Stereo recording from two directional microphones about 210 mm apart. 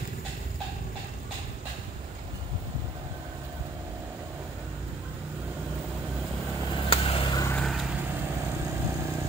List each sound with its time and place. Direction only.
6.7 s vehicle: 25° left (ahead or behind)
7.5 s vehicle: centre (ahead or behind)